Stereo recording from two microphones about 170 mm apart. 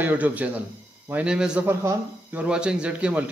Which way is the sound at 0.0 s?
10° right (ahead or behind).